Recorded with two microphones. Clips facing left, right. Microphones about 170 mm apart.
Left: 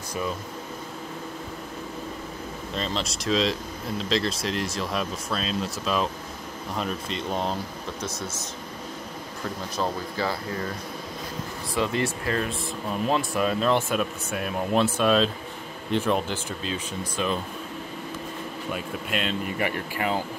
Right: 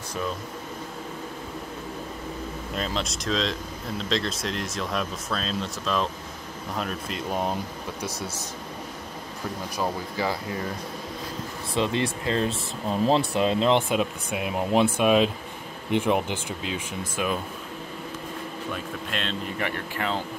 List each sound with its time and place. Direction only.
2.7 s speech: 5° right (ahead or behind)
9.8 s speech: 15° right (ahead or behind)
11.7 s speech: 20° right (ahead or behind)
18.7 s speech: 10° left (ahead or behind)